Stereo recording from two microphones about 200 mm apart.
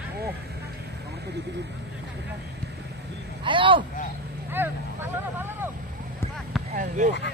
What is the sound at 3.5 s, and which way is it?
Speech, 25° right (ahead or behind).